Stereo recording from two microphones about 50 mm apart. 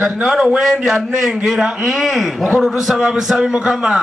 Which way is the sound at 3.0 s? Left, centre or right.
Centre.